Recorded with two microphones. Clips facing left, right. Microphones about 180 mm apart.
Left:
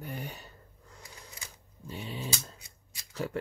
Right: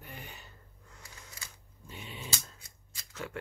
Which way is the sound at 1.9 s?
35° left (ahead or behind).